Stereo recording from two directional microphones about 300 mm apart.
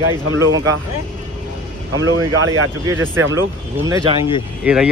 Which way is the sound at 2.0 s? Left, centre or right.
Right.